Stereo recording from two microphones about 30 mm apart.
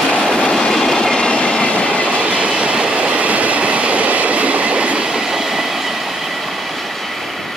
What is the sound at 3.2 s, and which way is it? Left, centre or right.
Train, right.